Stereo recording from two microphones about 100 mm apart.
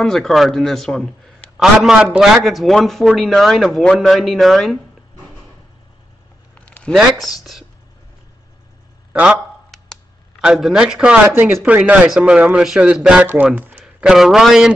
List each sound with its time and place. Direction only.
0.0 s speech: 5° left (ahead or behind)
1.6 s speech: 5° right (ahead or behind)
6.5 s a sound: 15° left (ahead or behind)
6.9 s speech: centre (ahead or behind)
9.1 s speech: 10° right (ahead or behind)
10.4 s speech: 5° right (ahead or behind)
14.0 s speech: 5° right (ahead or behind)